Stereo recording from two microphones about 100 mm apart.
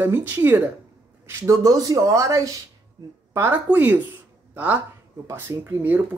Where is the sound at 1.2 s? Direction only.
30° right (ahead or behind).